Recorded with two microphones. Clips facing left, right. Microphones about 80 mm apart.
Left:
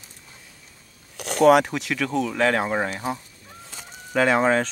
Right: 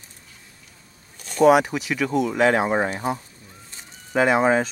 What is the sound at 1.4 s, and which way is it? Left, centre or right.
Speech, centre.